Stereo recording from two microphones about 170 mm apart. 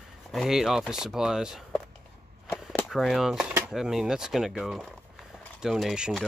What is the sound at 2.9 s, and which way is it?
Speech, centre (ahead or behind).